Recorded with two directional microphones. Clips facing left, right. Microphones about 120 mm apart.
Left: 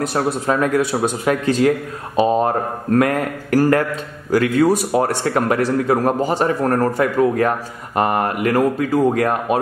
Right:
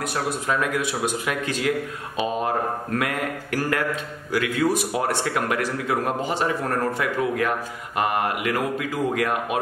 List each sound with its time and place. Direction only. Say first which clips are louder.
0.1 s speech: left 6 dB; 40° left (ahead or behind)